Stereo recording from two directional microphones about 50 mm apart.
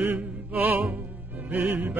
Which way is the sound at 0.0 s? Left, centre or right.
Right.